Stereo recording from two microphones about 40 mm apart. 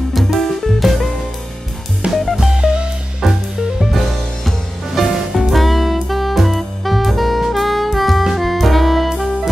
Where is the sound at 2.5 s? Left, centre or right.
Right.